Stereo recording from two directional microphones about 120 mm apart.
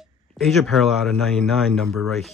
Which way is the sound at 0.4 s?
Centre (ahead or behind).